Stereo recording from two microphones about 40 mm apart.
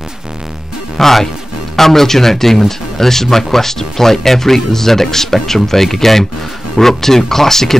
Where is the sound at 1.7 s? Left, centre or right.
Centre.